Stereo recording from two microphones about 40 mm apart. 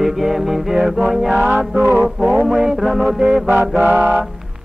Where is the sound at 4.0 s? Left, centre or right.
Right.